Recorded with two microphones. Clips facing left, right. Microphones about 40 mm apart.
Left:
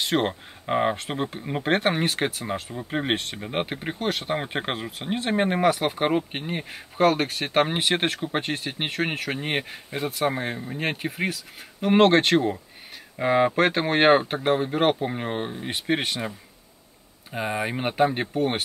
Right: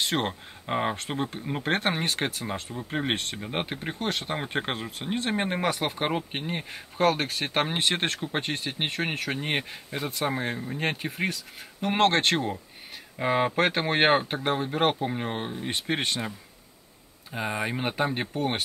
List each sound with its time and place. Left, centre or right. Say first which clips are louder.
0.0 s speech: left 3 dB; centre